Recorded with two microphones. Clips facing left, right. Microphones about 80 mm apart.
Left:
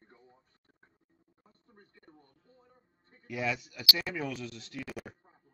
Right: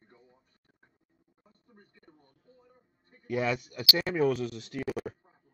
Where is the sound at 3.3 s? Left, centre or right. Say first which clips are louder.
Right 5 dB; right.